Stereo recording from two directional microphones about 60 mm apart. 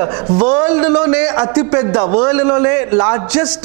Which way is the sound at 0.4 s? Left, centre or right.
Centre.